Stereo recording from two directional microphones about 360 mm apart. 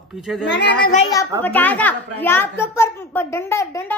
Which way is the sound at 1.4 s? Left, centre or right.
Centre.